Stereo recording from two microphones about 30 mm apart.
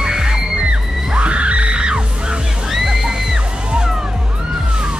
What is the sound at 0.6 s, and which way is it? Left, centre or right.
Music, right.